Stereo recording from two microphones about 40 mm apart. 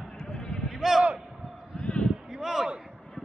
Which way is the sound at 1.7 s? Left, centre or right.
Left.